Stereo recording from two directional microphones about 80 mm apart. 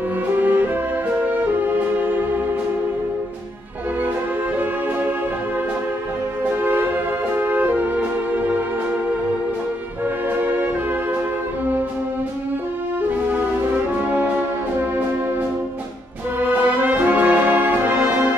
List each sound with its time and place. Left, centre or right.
0.4 s music: right
6.6 s music: right
10.3 s music: right
16.3 s brass instrument: right